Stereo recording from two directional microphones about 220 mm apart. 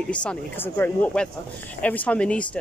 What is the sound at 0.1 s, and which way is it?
Speech, 5° left (ahead or behind).